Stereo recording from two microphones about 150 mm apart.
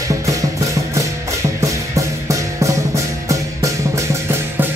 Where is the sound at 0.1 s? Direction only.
20° right (ahead or behind).